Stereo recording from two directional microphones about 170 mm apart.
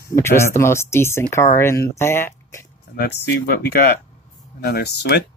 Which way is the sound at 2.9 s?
70° left (ahead or behind).